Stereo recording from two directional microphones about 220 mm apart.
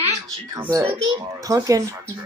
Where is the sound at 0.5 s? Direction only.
15° right (ahead or behind).